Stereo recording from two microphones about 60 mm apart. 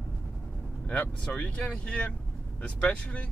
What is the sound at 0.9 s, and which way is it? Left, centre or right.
Speech, left.